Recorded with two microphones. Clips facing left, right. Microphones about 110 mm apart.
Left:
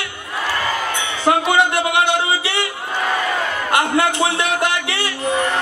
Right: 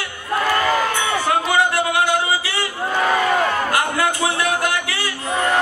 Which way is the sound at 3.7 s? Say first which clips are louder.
Left 3 dB; 25° left (ahead or behind).